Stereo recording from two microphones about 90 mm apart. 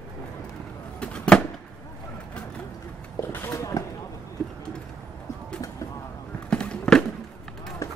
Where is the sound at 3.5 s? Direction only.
40° left (ahead or behind).